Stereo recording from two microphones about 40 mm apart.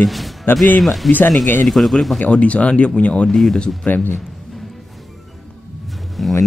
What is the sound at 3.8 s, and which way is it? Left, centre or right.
Speech, left.